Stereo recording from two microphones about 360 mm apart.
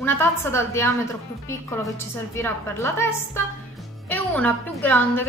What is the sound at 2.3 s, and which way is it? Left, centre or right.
A woman's voice, centre.